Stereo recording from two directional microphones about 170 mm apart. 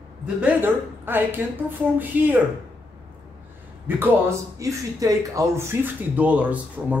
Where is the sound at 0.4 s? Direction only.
10° right (ahead or behind).